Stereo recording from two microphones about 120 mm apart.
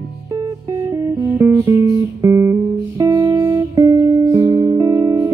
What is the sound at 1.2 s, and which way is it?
Music, 20° right (ahead or behind).